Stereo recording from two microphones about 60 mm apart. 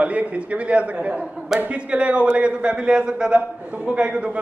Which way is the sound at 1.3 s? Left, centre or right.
Centre.